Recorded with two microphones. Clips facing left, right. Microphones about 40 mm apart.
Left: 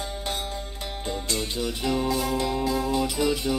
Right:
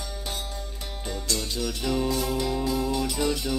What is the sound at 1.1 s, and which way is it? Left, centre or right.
Music, left.